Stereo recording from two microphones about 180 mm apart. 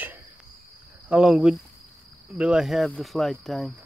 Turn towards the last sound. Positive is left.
turn(degrees=0)  # may be behind; listen again after turning